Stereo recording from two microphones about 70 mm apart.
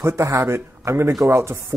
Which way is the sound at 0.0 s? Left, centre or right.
Right.